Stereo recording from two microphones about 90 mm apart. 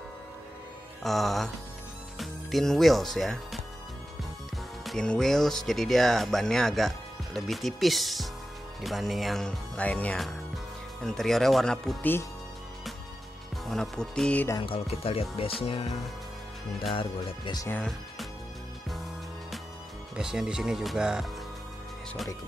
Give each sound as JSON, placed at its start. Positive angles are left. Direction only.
{"t": 1.0, "sound": "speech", "side_deg": 0}
{"t": 4.8, "sound": "speech", "side_deg": 10}
{"t": 12.0, "sound": "speech", "side_deg": 25}
{"t": 13.7, "sound": "speech", "side_deg": 5}
{"t": 14.6, "sound": "speech", "side_deg": 80}
{"t": 16.9, "sound": "speech", "side_deg": 70}
{"t": 20.2, "sound": "speech", "side_deg": -5}